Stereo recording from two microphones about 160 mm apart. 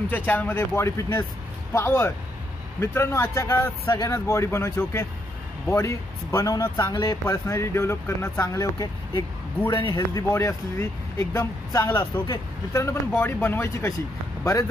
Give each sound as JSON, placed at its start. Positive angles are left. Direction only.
{"t": 0.1, "sound": "a man's voice", "side_deg": 10}